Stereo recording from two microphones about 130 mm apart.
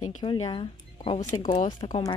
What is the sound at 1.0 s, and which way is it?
Speech, 60° left (ahead or behind).